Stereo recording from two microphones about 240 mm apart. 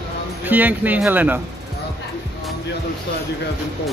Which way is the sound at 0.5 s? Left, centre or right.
Centre.